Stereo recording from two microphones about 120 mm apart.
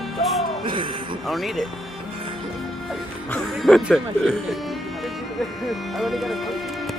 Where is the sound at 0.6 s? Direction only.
45° right (ahead or behind).